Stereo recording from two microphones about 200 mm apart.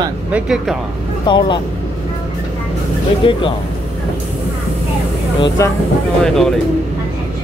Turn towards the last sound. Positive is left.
turn(degrees=0)  # may be behind; listen again after turning